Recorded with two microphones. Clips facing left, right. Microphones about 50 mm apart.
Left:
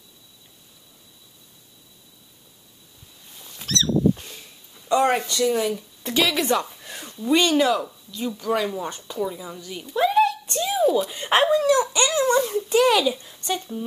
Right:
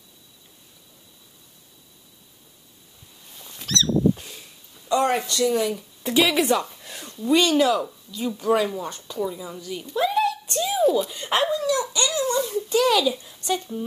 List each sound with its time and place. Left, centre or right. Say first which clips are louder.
3.3 s a sound: even; centre
4.8 s a woman's voice: left 2 dB; centre
8.8 s speech: left 1 dB; centre
11.1 s speech: left 3 dB; left
11.5 s dog: left 5 dB; left
12.7 s speech: left 1 dB; centre
13.1 s speech: right 1 dB; centre